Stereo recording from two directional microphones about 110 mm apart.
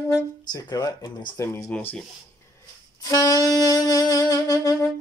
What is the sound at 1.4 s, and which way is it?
Speech, 25° left (ahead or behind).